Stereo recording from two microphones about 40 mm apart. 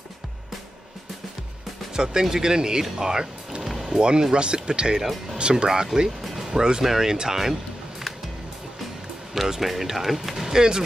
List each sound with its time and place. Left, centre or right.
2.0 s speech: centre
3.6 s music: centre
4.0 s speech: centre
4.9 s speech: centre
5.4 s speech: right
5.9 s speech: centre
9.3 s speech: centre